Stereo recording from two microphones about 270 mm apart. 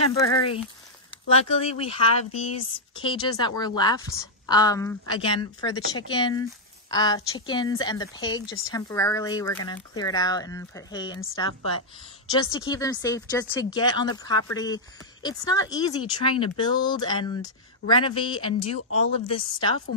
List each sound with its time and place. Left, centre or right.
0.1 s a woman's voice: centre
12.3 s a woman's voice: centre